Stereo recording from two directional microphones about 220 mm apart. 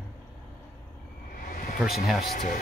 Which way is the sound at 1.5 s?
45° left (ahead or behind).